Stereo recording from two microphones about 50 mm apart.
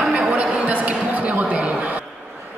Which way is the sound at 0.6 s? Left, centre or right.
Right.